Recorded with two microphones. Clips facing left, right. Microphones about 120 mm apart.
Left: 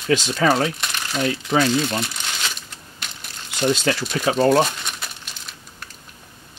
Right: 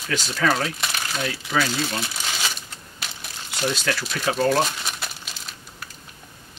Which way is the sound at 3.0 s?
5° right (ahead or behind).